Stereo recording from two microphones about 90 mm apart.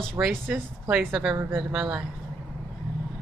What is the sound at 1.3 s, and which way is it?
Speech, 25° right (ahead or behind).